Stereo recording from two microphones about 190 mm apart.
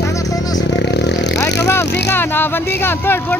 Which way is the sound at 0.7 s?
65° left (ahead or behind).